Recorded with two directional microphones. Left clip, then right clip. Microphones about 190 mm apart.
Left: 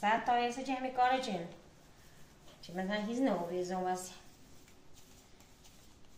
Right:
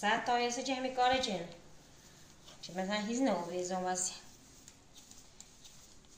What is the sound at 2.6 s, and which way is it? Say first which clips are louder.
A woman's voice: right 1 dB; 20° left (ahead or behind).